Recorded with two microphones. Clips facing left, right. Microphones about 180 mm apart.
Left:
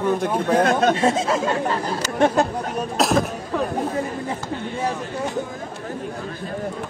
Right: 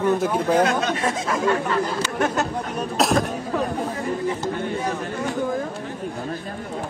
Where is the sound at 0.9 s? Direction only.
30° left (ahead or behind).